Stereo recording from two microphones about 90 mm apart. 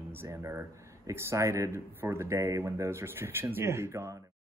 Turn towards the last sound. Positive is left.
turn(degrees=-30)  # may be behind; listen again after turning